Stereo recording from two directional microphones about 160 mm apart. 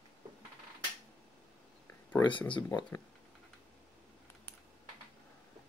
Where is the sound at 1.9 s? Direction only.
15° left (ahead or behind).